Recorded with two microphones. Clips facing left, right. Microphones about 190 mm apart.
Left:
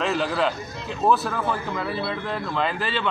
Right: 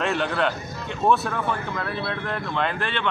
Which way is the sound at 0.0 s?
Centre (ahead or behind).